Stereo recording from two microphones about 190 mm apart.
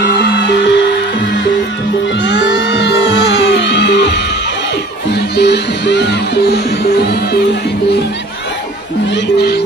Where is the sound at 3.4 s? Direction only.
65° left (ahead or behind).